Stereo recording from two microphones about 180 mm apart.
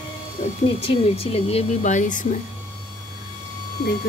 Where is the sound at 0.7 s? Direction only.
35° left (ahead or behind).